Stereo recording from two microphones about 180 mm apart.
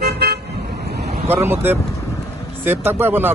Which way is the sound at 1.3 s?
10° right (ahead or behind).